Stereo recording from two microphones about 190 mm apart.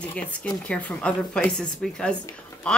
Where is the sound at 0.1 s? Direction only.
5° left (ahead or behind).